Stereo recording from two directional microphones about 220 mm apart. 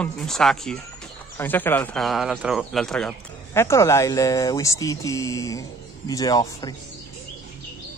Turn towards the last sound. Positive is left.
turn(degrees=15)  # may be behind; listen again after turning